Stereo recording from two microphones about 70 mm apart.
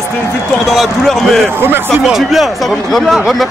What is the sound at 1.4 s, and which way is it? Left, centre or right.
Speech, right.